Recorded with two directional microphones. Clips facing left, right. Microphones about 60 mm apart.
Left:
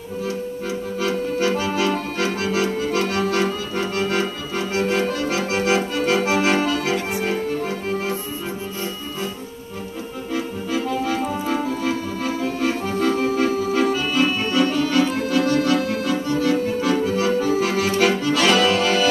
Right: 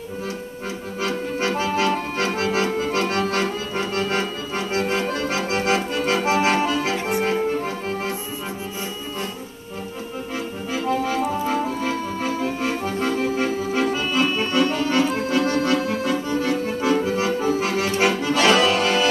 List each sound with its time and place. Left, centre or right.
1.0 s accordion: right
4.6 s accordion: right
10.3 s accordion: right
11.8 s music: right
13.4 s accordion: right